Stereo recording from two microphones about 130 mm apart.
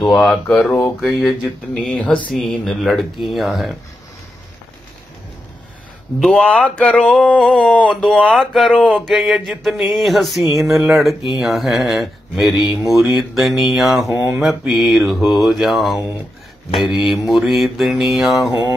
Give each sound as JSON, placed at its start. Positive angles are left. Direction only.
{"t": 0.0, "sound": "speech", "side_deg": 0}
{"t": 0.7, "sound": "a sound", "side_deg": 10}
{"t": 1.7, "sound": "speech", "side_deg": 5}
{"t": 6.1, "sound": "speech", "side_deg": 5}
{"t": 6.8, "sound": "a sound", "side_deg": 5}
{"t": 7.9, "sound": "speech", "side_deg": 0}
{"t": 10.4, "sound": "speech", "side_deg": -25}
{"t": 10.7, "sound": "speech", "side_deg": -5}
{"t": 17.3, "sound": "speech", "side_deg": 0}